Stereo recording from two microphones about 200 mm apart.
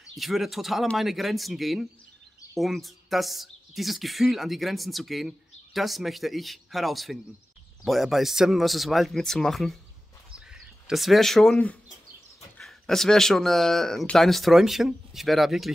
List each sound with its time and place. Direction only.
0.0 s speech: centre (ahead or behind)